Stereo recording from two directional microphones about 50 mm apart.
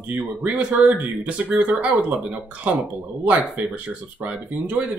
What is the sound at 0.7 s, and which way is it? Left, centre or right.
Speech, right.